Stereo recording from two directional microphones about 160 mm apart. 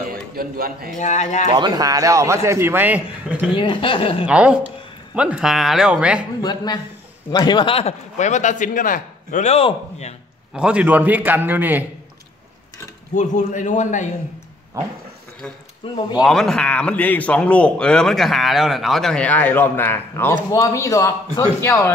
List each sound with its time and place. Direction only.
0.1 s a man's voice: 70° right (ahead or behind)
0.9 s a man's voice: 50° left (ahead or behind)
1.5 s a man's voice: 25° right (ahead or behind); by 3.5 s 10° right (ahead or behind)
3.5 s speech: 30° left (ahead or behind)
4.3 s a man's voice: 5° right (ahead or behind)
6.4 s a man's voice: 25° left (ahead or behind)
10.5 s a man's voice: 5° right (ahead or behind)
13.1 s a man's voice: 50° left (ahead or behind)
15.8 s speech: 35° left (ahead or behind)
16.2 s a man's voice: 5° left (ahead or behind)